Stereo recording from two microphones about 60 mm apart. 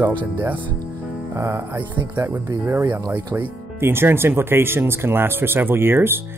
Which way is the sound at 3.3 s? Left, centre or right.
Right.